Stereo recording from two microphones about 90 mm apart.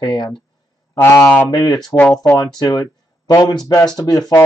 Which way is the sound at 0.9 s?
30° left (ahead or behind).